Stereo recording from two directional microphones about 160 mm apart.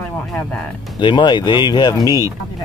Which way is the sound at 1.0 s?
30° left (ahead or behind).